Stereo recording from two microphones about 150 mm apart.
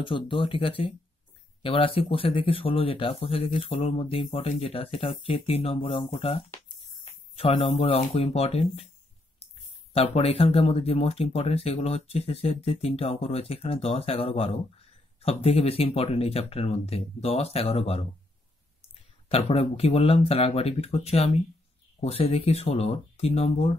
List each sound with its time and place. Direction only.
0.0 s speech: 35° left (ahead or behind)
9.9 s speech: 40° left (ahead or behind)
19.2 s speech: 40° left (ahead or behind)